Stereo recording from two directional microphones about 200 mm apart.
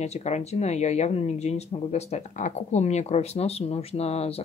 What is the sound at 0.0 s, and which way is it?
Speech, 35° left (ahead or behind).